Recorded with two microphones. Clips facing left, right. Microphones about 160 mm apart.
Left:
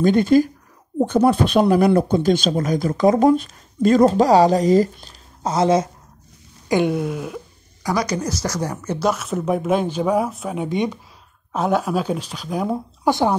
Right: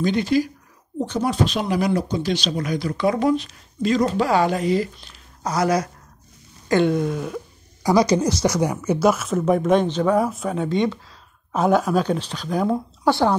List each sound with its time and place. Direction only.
0.0 s speech: 50° left (ahead or behind)
5.4 s speech: 25° left (ahead or behind)
6.7 s a woman's voice: 10° left (ahead or behind)
7.8 s speech: 25° right (ahead or behind)
8.4 s a woman's voice: 15° right (ahead or behind); by 11.0 s 15° left (ahead or behind)
11.5 s a woman's voice: centre (ahead or behind); by 13.4 s 15° left (ahead or behind)